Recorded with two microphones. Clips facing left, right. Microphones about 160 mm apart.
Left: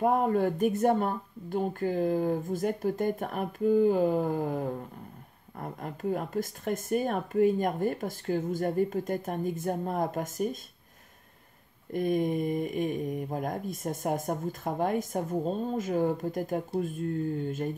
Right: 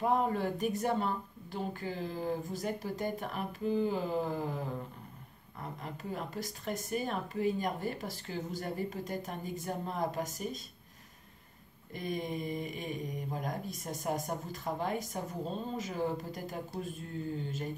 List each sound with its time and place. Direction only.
0.0 s speech: 50° left (ahead or behind)
11.9 s speech: 50° left (ahead or behind)